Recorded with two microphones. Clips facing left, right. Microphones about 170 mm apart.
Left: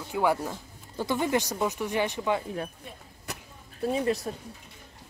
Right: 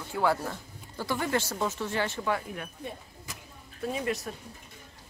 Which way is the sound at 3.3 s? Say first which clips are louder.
Left 6 dB; 70° left (ahead or behind).